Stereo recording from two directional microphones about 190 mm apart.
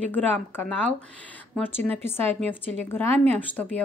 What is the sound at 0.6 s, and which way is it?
Speech, 10° left (ahead or behind).